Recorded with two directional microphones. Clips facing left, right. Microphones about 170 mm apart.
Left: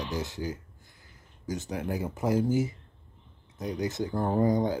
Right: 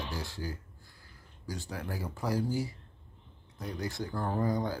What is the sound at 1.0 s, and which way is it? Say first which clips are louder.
Speech: left 5 dB; 20° left (ahead or behind).